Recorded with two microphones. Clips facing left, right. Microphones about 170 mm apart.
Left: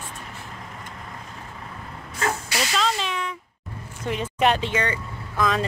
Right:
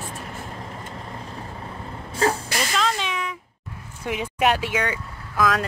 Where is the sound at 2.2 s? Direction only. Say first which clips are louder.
Right 5 dB; 30° right (ahead or behind).